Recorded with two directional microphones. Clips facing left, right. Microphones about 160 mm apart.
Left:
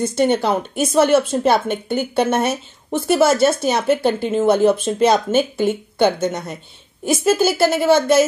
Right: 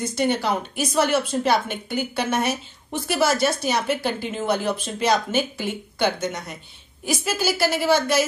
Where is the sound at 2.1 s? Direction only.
25° left (ahead or behind).